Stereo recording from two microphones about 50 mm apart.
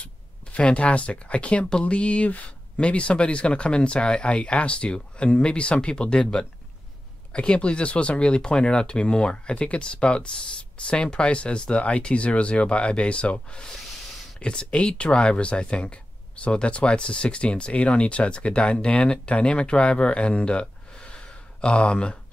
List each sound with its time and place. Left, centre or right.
0.0 s speech: left